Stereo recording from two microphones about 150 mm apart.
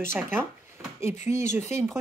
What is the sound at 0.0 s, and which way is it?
Speech, 15° right (ahead or behind).